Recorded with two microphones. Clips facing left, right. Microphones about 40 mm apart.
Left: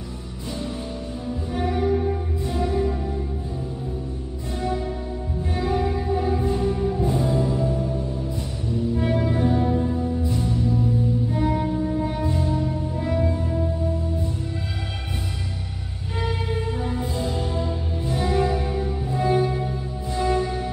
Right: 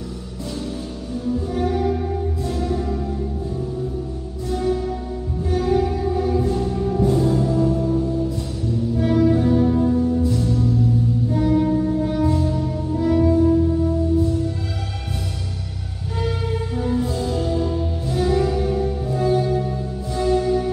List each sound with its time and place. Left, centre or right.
1.5 s music: left
4.5 s music: left
8.9 s music: left
16.3 s music: left